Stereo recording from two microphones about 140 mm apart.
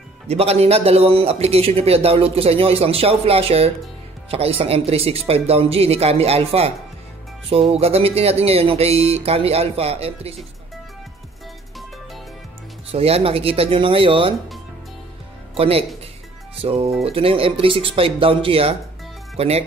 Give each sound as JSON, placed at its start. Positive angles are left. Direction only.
{"t": 0.3, "sound": "speech", "side_deg": -50}
{"t": 7.7, "sound": "speech", "side_deg": -45}
{"t": 12.9, "sound": "speech", "side_deg": -45}
{"t": 15.5, "sound": "speech", "side_deg": -45}